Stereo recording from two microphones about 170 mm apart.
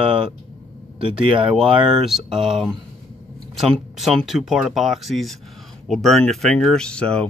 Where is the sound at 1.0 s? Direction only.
5° right (ahead or behind).